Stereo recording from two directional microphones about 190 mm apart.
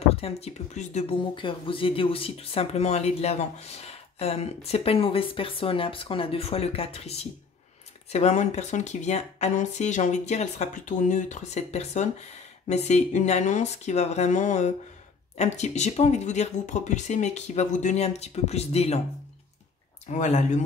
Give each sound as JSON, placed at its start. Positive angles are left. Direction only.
{"t": 0.2, "sound": "speech", "side_deg": 35}
{"t": 20.1, "sound": "speech", "side_deg": 40}